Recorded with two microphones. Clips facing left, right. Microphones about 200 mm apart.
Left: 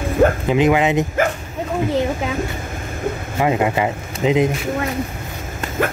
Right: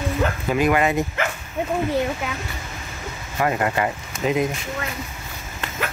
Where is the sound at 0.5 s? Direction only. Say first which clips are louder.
Left 4 dB; 20° left (ahead or behind).